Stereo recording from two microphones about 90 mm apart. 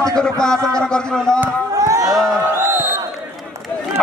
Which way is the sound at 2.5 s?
30° right (ahead or behind).